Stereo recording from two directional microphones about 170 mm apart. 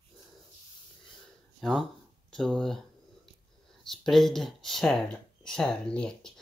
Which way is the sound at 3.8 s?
Centre (ahead or behind).